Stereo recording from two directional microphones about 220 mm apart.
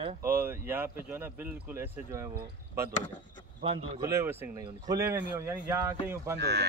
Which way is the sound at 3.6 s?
25° right (ahead or behind).